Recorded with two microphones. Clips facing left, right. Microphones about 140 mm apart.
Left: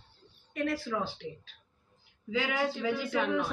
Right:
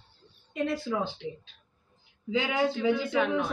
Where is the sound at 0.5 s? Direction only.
20° right (ahead or behind).